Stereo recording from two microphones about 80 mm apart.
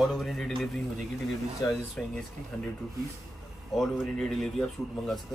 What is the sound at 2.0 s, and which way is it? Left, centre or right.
Speech, centre.